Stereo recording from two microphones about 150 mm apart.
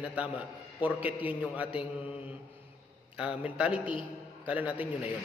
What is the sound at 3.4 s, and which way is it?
A man's voice, 10° right (ahead or behind).